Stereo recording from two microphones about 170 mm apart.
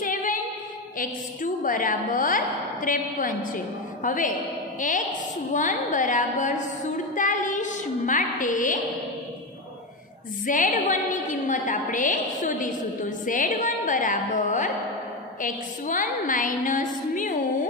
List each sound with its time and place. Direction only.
0.0 s female singing: 50° left (ahead or behind)
0.9 s a woman's voice: 50° left (ahead or behind)
10.4 s a woman's voice: 50° left (ahead or behind)